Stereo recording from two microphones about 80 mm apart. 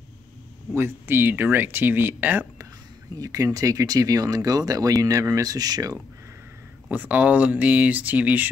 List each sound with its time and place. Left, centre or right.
0.7 s speech: right
3.2 s speech: right
6.9 s speech: right